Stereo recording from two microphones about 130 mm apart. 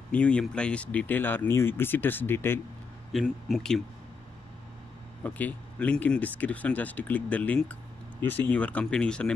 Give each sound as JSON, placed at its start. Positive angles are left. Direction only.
{"t": 0.1, "sound": "speech", "side_deg": 10}
{"t": 3.1, "sound": "speech", "side_deg": 0}
{"t": 5.2, "sound": "speech", "side_deg": 10}